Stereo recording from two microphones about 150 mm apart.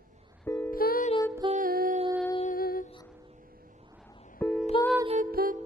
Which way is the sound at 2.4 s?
70° left (ahead or behind).